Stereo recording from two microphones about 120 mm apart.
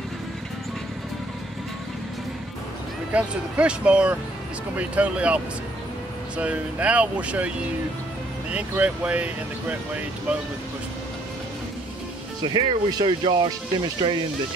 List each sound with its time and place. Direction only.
3.1 s speech: 10° right (ahead or behind)
8.5 s speech: 10° right (ahead or behind)
12.5 s speech: 40° right (ahead or behind)